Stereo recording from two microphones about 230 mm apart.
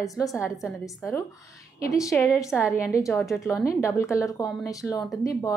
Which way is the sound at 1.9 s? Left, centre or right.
Centre.